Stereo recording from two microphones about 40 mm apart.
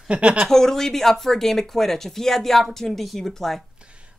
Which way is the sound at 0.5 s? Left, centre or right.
Centre.